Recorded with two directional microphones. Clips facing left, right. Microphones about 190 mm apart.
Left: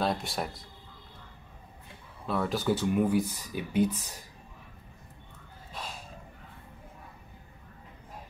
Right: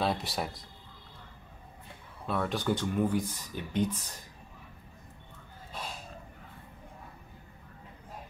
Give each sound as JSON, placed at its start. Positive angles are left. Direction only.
{"t": 0.0, "sound": "speech", "side_deg": 0}
{"t": 2.2, "sound": "speech", "side_deg": 0}